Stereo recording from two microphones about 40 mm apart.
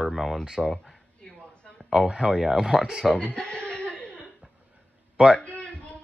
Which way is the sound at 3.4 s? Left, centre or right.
Left.